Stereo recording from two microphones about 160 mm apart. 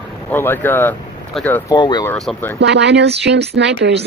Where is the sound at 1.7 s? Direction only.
25° left (ahead or behind).